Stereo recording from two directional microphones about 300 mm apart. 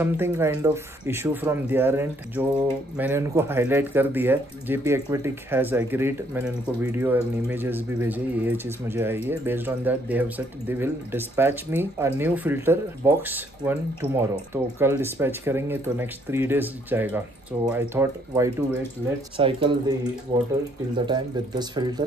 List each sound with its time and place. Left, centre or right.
0.0 s speech: centre